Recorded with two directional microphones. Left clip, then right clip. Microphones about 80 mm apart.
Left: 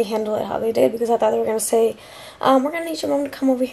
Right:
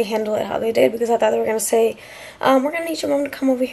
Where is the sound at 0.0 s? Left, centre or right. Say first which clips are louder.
Right 1 dB; centre.